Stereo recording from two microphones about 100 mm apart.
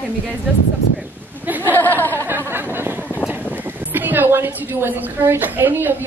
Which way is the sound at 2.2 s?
25° right (ahead or behind).